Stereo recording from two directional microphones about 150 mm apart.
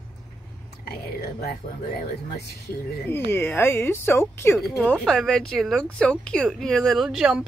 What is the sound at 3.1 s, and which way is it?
A woman's voice, 15° left (ahead or behind).